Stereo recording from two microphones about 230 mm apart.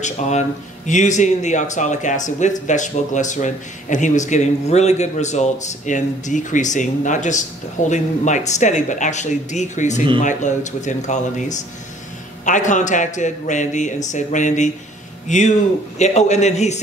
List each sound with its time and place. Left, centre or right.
0.0 s a man's voice: left